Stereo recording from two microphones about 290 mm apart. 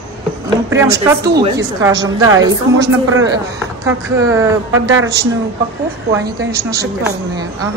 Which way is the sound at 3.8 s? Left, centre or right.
Centre.